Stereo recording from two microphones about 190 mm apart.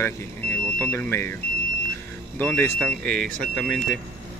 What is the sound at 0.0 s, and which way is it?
Speech, 10° left (ahead or behind).